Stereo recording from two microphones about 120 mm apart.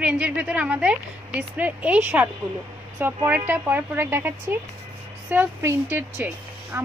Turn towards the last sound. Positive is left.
turn(degrees=-15)  # may be behind; listen again after turning